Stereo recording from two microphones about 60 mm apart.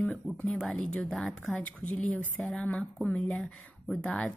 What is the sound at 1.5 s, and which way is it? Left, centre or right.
Speech, left.